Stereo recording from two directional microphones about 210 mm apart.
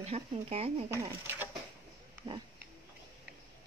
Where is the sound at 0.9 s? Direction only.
10° right (ahead or behind).